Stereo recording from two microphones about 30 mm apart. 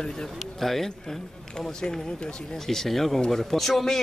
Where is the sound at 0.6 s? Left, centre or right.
Centre.